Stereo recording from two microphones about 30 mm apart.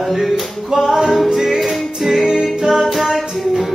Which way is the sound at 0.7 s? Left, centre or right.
Right.